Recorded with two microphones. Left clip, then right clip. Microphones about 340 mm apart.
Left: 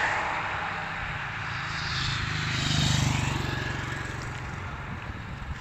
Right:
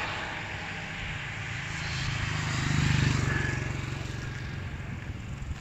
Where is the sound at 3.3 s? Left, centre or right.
Left.